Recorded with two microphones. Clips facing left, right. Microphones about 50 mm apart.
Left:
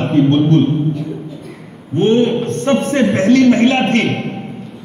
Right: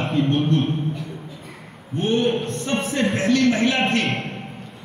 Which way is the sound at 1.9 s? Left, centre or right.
Left.